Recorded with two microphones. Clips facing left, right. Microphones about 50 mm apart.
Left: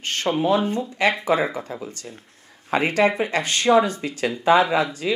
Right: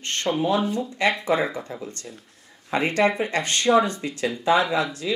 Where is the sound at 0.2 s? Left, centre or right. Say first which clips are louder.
Left 2 dB; centre.